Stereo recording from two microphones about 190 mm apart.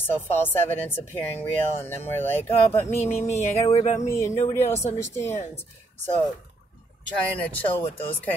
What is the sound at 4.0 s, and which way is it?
Speech, 15° left (ahead or behind).